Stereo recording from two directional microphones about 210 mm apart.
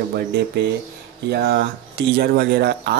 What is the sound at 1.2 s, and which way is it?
Speech, 55° right (ahead or behind).